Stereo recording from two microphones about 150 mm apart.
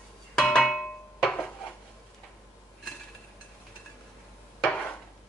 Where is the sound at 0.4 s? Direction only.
5° left (ahead or behind).